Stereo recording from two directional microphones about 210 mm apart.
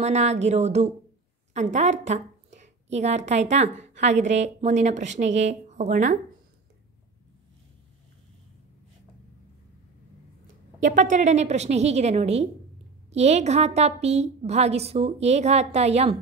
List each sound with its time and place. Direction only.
0.0 s a woman's voice: 30° right (ahead or behind)
10.8 s a woman's voice: 35° right (ahead or behind)